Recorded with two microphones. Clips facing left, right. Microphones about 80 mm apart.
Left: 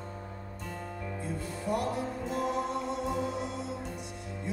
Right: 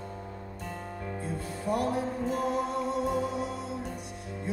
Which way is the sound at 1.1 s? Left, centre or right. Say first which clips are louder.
Right 2 dB; right.